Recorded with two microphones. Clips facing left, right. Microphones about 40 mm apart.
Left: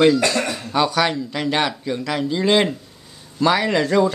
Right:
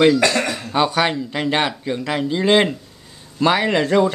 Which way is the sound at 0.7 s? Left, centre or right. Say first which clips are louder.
Right 1 dB; right.